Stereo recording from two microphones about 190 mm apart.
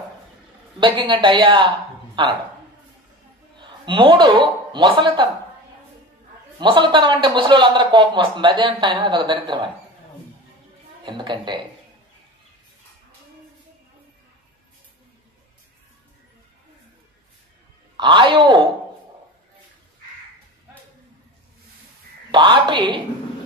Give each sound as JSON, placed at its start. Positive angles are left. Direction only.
{"t": 0.7, "sound": "a man's voice", "side_deg": -25}
{"t": 3.5, "sound": "a sound", "side_deg": -25}
{"t": 4.7, "sound": "a man's voice", "side_deg": -25}
{"t": 6.6, "sound": "a man's voice", "side_deg": -25}
{"t": 11.1, "sound": "a man's voice", "side_deg": -25}
{"t": 17.9, "sound": "a man's voice", "side_deg": -25}
{"t": 22.3, "sound": "a man's voice", "side_deg": -25}